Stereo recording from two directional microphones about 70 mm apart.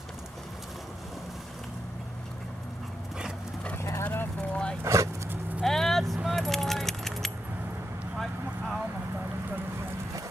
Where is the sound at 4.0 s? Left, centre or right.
Left.